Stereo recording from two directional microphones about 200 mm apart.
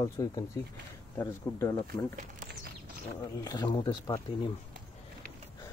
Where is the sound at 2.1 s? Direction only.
40° right (ahead or behind).